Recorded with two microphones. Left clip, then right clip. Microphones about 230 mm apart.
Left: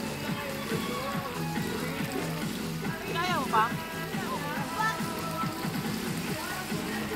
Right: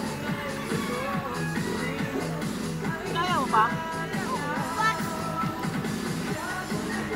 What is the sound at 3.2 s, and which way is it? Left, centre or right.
Music, centre.